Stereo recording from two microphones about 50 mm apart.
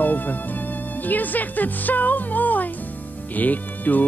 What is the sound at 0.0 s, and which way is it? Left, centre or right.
Music, left.